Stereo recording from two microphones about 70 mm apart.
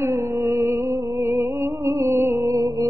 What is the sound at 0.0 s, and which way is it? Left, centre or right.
Music, right.